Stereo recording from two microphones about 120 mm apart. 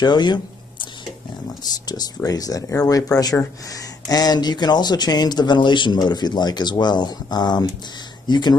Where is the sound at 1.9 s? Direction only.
30° left (ahead or behind).